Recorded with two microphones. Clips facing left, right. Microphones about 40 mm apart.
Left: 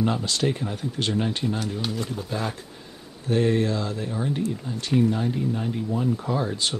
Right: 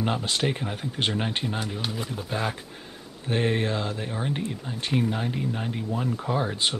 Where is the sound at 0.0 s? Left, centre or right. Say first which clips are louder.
Left 2 dB; right.